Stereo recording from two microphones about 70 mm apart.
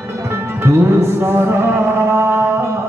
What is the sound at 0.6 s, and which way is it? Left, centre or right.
Music, right.